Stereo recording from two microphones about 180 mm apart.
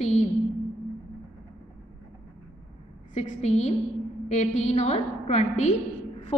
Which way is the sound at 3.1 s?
40° left (ahead or behind).